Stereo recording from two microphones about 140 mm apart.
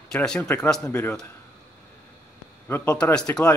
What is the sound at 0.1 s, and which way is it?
A man's voice, 5° left (ahead or behind).